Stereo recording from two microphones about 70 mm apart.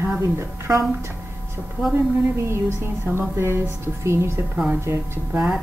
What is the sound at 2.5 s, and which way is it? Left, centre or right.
A woman's voice, right.